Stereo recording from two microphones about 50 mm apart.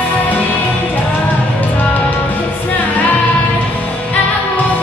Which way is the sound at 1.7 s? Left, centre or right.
Left.